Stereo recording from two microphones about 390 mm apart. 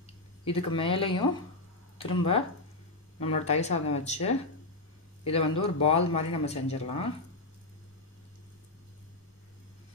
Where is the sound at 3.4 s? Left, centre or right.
Centre.